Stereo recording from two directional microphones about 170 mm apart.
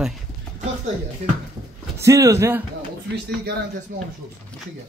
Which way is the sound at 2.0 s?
20° right (ahead or behind).